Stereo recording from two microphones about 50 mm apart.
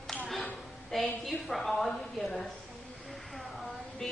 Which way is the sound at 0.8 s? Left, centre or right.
Centre.